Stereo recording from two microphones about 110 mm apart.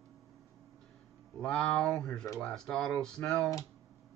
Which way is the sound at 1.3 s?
5° left (ahead or behind).